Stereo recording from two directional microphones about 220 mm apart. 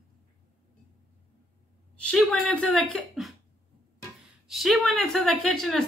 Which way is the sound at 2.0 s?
Centre (ahead or behind).